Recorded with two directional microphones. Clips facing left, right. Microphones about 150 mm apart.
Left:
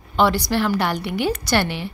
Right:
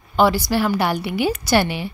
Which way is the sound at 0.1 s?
5° right (ahead or behind).